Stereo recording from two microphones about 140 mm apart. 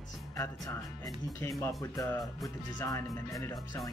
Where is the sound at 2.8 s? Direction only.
20° left (ahead or behind).